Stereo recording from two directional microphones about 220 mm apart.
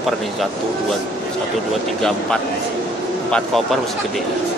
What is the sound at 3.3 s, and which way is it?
Speech, centre (ahead or behind).